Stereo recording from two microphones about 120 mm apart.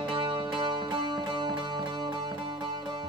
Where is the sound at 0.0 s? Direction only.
40° right (ahead or behind).